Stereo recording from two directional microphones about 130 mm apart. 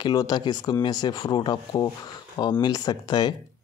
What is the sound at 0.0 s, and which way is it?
Speech, 30° left (ahead or behind).